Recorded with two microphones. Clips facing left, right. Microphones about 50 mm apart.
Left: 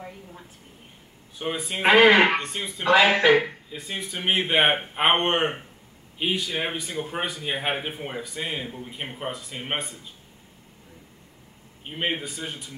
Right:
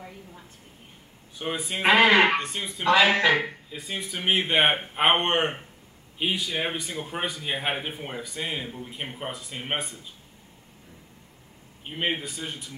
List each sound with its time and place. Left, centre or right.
1.4 s speech: centre
3.4 s speech: centre
11.8 s speech: centre